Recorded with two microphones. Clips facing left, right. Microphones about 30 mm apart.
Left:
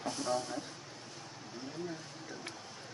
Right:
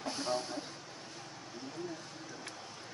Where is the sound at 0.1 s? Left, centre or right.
Right.